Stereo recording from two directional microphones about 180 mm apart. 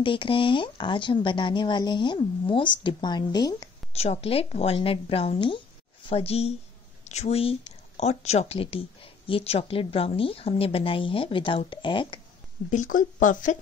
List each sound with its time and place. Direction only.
0.0 s speech: 30° left (ahead or behind)
3.9 s speech: 35° left (ahead or behind)
12.7 s speech: 45° left (ahead or behind)